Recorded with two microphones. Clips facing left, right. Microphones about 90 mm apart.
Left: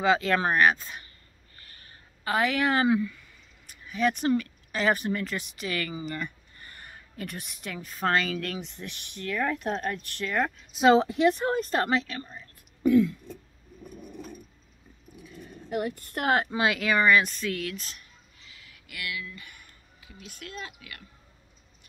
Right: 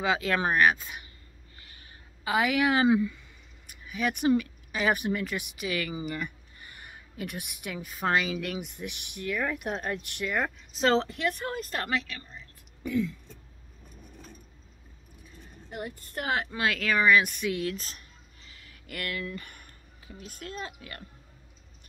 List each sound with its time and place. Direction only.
0.0 s speech: 5° right (ahead or behind)
1.6 s a sound: 15° right (ahead or behind)
3.6 s speech: 5° right (ahead or behind)
10.7 s speech: 10° left (ahead or behind)
11.5 s speech: 35° left (ahead or behind)
12.3 s whispering: 50° left (ahead or behind)
15.2 s vehicle: 90° left; by 16.3 s 60° left (ahead or behind)
16.4 s speech: 20° left (ahead or behind)
17.0 s speech: 5° right (ahead or behind)
17.6 s a sound: 35° right (ahead or behind)